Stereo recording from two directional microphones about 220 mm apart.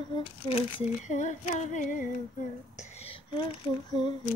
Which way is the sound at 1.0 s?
35° left (ahead or behind).